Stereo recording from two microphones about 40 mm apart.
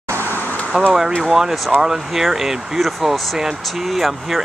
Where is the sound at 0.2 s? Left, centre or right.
Left.